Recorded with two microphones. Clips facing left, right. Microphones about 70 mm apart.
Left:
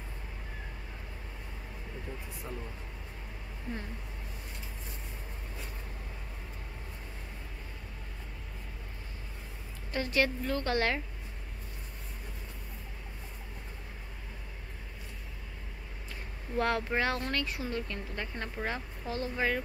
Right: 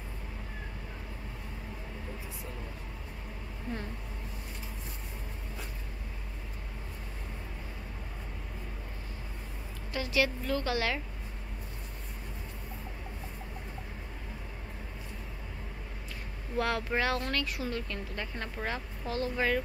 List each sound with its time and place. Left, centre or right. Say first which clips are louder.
9.9 s a woman's voice: even; left
16.5 s speech: left 1 dB; left